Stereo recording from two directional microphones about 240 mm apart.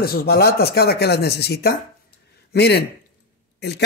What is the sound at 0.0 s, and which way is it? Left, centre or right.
Speech, left.